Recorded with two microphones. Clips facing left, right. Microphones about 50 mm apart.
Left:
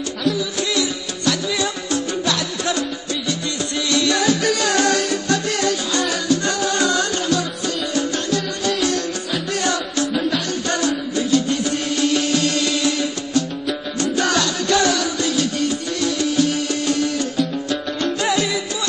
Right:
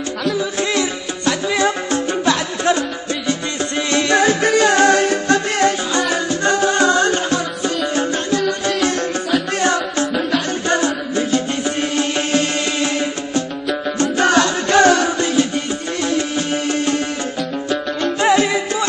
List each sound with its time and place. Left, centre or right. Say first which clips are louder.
0.4 s music: right 3 dB; right
9.6 s music: right 4 dB; right
16.0 s sitar: left 1 dB; right
18.2 s music: right 8 dB; right